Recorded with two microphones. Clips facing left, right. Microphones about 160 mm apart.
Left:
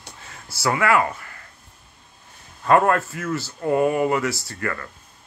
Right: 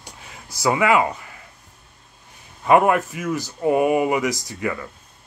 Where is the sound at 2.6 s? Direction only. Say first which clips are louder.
Right 2 dB; 15° right (ahead or behind).